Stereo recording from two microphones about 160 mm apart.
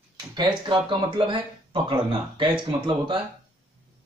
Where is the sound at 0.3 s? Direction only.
30° right (ahead or behind).